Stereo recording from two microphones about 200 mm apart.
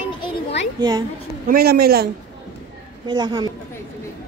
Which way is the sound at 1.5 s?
50° right (ahead or behind).